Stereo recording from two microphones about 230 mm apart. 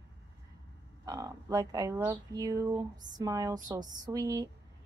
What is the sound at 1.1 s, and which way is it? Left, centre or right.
Speech, centre.